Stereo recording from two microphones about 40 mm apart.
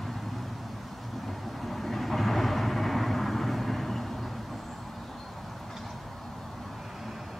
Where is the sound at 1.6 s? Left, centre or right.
Centre.